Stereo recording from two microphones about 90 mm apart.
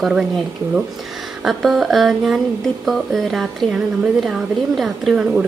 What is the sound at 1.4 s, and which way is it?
A woman's voice, centre (ahead or behind).